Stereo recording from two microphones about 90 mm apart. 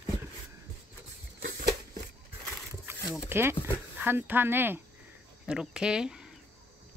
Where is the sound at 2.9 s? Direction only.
30° right (ahead or behind).